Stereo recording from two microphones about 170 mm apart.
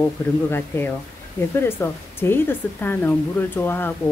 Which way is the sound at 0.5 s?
15° left (ahead or behind).